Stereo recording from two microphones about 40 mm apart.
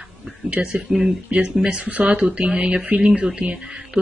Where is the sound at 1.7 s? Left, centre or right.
Right.